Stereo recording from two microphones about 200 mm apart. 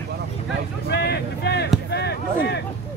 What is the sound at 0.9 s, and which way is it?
Speech, 55° left (ahead or behind).